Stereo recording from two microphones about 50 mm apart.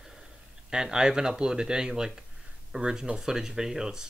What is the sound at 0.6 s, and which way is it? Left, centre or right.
Speech, centre.